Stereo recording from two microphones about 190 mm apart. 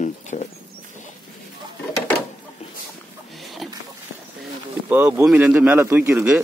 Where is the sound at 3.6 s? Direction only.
Centre (ahead or behind).